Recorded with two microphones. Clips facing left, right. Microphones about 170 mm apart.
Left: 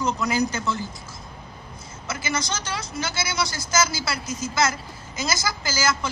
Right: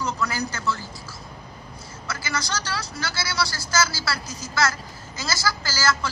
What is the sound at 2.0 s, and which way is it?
A woman's voice, 20° left (ahead or behind).